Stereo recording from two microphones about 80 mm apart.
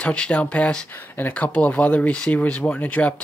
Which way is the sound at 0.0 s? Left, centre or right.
Centre.